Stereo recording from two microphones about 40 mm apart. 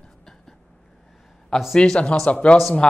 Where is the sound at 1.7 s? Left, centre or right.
Centre.